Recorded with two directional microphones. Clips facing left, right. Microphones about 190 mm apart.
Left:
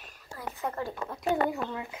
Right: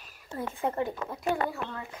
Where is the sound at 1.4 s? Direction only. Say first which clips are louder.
Left 3 dB; 15° left (ahead or behind).